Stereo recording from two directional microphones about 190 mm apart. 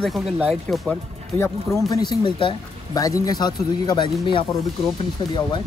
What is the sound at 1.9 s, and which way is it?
Speech, 20° left (ahead or behind).